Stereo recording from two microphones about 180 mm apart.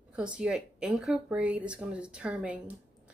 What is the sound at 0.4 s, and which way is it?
Speech, 5° right (ahead or behind).